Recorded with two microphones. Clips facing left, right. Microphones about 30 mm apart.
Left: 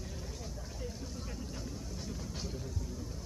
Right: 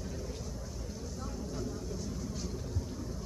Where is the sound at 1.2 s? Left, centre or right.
Left.